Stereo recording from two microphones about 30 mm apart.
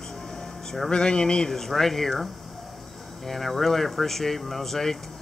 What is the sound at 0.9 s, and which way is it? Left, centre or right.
Speech, left.